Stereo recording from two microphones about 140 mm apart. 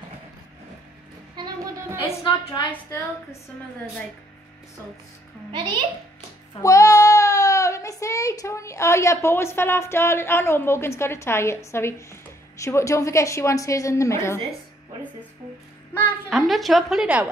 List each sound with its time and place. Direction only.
2.7 s a child's voice: 20° left (ahead or behind)
5.5 s a child's voice: 35° right (ahead or behind)
6.6 s a child's voice: 25° left (ahead or behind)
16.3 s a woman's voice: centre (ahead or behind)